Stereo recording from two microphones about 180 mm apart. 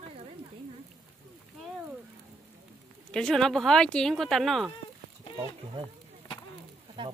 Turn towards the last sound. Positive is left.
turn(degrees=-30)  # may be behind; listen again after turning